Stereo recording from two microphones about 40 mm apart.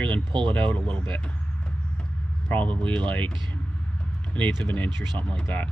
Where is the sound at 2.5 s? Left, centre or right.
Left.